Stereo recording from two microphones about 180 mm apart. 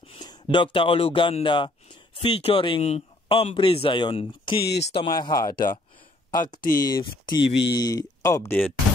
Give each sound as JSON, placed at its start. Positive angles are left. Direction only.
{"t": 0.0, "sound": "speech", "side_deg": 25}
{"t": 5.5, "sound": "speech", "side_deg": 55}
{"t": 6.9, "sound": "speech", "side_deg": 25}
{"t": 7.3, "sound": "speech", "side_deg": 80}
{"t": 7.7, "sound": "speech", "side_deg": 20}